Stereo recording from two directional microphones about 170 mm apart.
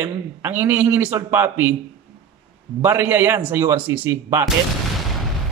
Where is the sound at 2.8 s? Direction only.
15° right (ahead or behind).